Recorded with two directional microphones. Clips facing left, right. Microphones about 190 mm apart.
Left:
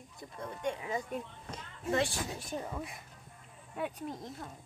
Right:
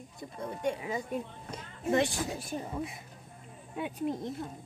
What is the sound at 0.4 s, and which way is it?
Speech, 35° right (ahead or behind).